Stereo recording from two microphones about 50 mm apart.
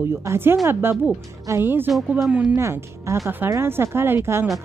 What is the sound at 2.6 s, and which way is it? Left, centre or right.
Speech, right.